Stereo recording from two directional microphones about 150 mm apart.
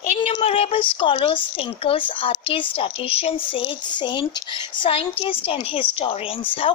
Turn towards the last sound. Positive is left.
turn(degrees=40)  # may be behind; listen again after turning